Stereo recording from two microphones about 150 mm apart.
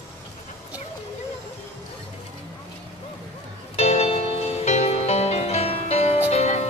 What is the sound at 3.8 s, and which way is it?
Music, 45° left (ahead or behind).